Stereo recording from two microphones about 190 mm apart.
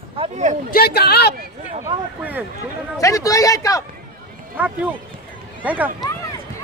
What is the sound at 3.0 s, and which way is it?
Speech, 15° left (ahead or behind).